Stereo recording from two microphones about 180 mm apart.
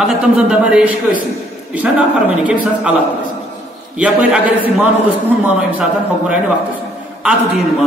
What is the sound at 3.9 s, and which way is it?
Speech, 5° right (ahead or behind).